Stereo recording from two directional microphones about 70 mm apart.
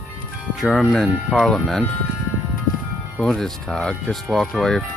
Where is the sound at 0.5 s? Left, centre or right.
Centre.